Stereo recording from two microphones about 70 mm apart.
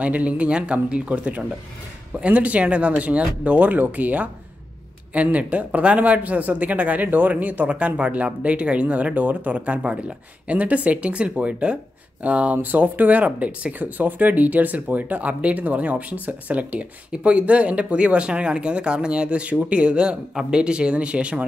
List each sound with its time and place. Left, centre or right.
0.0 s speech: right